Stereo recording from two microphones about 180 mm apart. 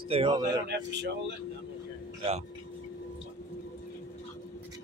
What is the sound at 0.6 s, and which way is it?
Speech, 70° right (ahead or behind).